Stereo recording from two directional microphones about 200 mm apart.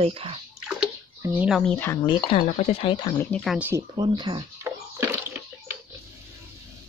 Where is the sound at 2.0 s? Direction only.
25° left (ahead or behind).